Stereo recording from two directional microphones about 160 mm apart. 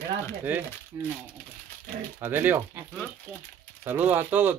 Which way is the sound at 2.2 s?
15° right (ahead or behind).